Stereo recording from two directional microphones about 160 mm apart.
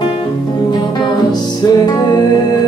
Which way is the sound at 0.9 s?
25° left (ahead or behind).